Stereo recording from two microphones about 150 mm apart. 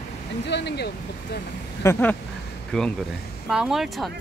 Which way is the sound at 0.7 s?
90° left.